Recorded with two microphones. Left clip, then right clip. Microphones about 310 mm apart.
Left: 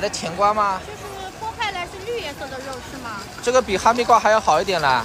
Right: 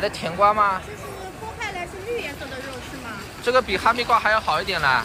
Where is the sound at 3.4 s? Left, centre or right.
Centre.